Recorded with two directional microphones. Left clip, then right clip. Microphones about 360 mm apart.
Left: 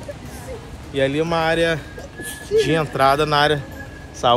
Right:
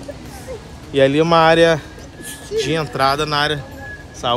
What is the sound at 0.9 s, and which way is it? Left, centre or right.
Speech, right.